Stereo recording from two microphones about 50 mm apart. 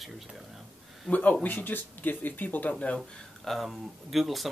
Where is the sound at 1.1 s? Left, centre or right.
Left.